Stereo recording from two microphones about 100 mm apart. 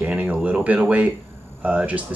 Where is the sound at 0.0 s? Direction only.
15° right (ahead or behind).